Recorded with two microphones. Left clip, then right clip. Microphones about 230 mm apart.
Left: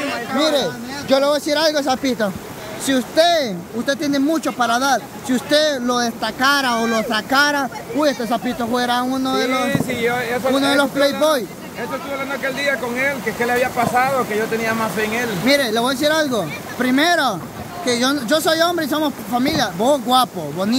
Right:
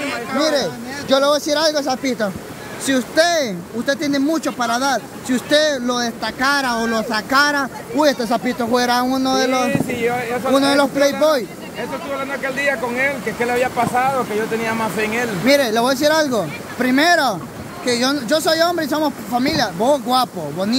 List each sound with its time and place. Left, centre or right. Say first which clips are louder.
0.0 s a sound: even; centre
0.6 s speech: even; centre
12.4 s speech: right 1 dB; centre